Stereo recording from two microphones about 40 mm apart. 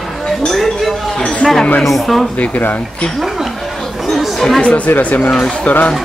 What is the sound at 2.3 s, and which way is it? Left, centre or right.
Speech, left.